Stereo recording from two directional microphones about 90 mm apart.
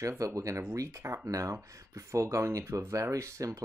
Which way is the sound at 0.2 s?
35° right (ahead or behind).